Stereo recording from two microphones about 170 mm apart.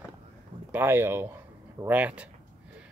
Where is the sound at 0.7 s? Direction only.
15° right (ahead or behind).